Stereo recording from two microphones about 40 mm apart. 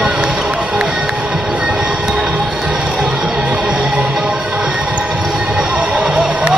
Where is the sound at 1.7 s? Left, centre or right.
Centre.